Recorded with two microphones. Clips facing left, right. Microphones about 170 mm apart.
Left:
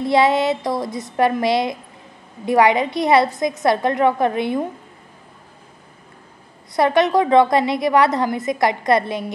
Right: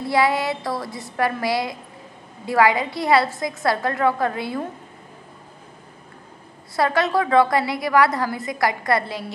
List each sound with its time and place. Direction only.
0.0 s a woman's voice: 20° left (ahead or behind)
6.7 s a woman's voice: 20° left (ahead or behind)